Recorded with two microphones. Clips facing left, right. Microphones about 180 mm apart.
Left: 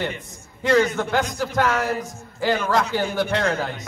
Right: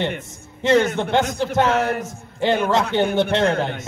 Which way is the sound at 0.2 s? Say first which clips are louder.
Right 3 dB; 25° right (ahead or behind).